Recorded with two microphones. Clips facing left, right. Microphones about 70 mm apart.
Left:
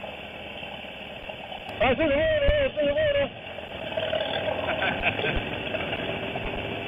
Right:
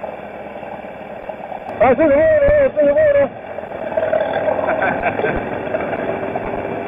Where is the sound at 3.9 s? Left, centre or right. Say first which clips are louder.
Right 11 dB; right.